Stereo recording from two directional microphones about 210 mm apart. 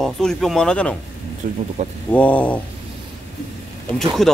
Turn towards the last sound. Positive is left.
turn(degrees=0)  # may be behind; listen again after turning